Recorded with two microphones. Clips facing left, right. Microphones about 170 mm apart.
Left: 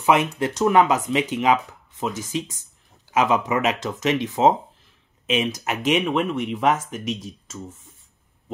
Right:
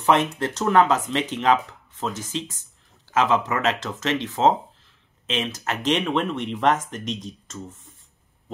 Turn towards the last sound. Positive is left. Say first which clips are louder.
# left 1 dB
turn(degrees=5)  # may be behind; listen again after turning